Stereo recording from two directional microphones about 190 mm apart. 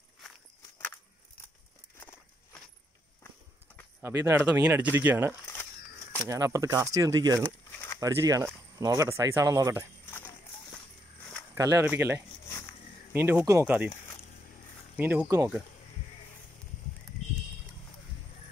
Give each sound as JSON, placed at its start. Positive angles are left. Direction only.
{"t": 4.0, "sound": "speech", "side_deg": -15}
{"t": 11.5, "sound": "speech", "side_deg": -15}
{"t": 12.4, "sound": "a sound", "side_deg": 15}
{"t": 13.1, "sound": "speech", "side_deg": -10}
{"t": 15.0, "sound": "speech", "side_deg": -10}